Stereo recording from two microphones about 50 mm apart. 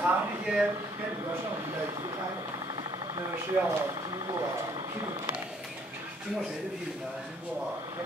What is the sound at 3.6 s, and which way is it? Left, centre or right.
Speech, right.